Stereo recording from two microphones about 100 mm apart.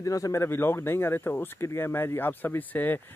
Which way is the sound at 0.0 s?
35° left (ahead or behind).